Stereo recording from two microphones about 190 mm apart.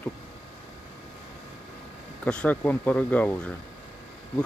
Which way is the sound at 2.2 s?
5° left (ahead or behind).